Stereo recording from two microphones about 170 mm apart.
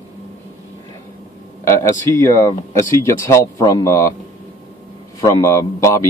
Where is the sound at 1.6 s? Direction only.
15° left (ahead or behind).